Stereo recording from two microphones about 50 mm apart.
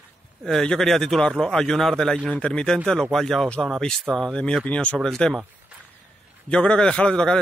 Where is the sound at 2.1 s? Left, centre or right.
Left.